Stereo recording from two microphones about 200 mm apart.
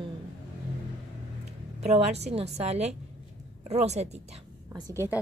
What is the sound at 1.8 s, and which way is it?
A woman's voice, 35° right (ahead or behind).